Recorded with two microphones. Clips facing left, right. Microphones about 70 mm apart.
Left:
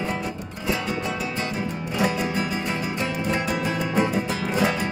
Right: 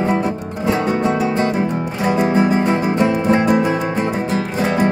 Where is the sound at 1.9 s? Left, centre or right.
Right.